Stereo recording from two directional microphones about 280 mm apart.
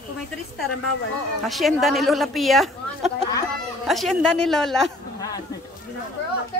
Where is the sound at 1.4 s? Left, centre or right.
Centre.